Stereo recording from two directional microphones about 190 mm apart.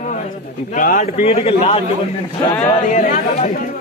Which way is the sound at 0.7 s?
40° left (ahead or behind).